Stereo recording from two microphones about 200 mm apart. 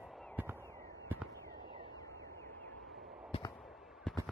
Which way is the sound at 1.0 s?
10° right (ahead or behind).